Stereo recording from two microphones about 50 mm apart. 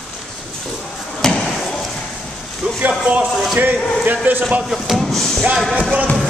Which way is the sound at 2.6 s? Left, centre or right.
Right.